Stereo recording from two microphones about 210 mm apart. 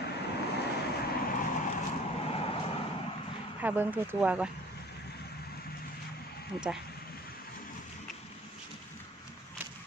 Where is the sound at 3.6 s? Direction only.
10° right (ahead or behind).